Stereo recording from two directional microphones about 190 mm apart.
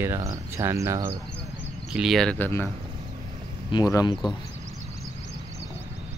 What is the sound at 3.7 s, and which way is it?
Speech, 20° left (ahead or behind).